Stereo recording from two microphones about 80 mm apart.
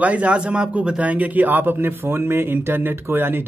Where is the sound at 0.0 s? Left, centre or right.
Centre.